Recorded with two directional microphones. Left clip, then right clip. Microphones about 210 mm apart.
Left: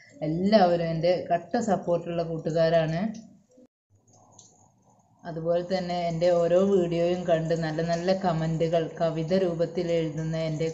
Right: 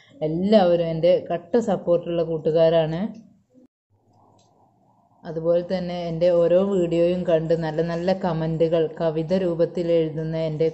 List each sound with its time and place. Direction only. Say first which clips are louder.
0.2 s a woman's voice: right 3 dB; 55° right (ahead or behind)
5.2 s speech: right 5 dB; 55° right (ahead or behind)